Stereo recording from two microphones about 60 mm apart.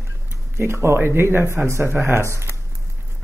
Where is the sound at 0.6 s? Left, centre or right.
Right.